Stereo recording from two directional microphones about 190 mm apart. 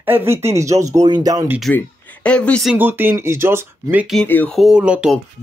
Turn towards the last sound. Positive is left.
turn(degrees=-5)  # may be behind; listen again after turning